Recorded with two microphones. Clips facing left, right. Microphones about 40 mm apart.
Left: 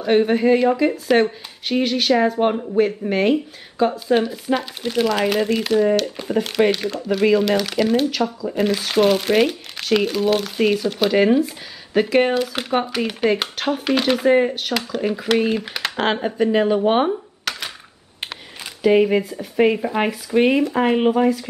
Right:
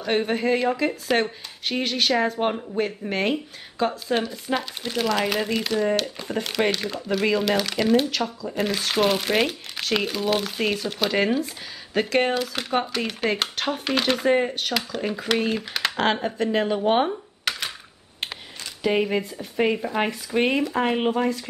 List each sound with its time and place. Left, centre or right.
0.0 s speech: centre
17.5 s a sound: centre
18.8 s speech: centre